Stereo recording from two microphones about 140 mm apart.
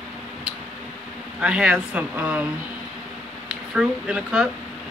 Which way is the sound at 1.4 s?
5° right (ahead or behind).